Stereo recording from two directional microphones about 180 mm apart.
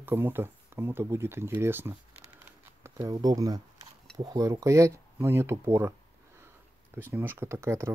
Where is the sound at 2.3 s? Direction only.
15° right (ahead or behind).